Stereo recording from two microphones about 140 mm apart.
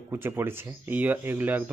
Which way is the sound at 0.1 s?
15° right (ahead or behind).